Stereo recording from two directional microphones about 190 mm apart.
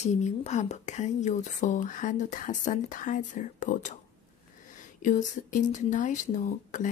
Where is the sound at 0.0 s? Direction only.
35° left (ahead or behind).